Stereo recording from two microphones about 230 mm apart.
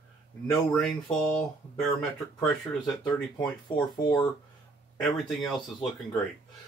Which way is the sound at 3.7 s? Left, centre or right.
Left.